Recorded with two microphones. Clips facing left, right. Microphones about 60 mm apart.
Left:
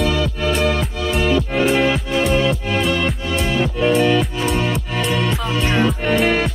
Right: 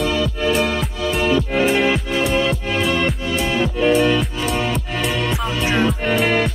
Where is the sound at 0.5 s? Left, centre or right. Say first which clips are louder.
Left 1 dB; centre.